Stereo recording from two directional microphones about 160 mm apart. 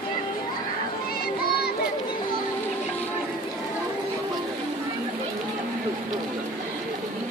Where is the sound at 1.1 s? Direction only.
75° left (ahead or behind).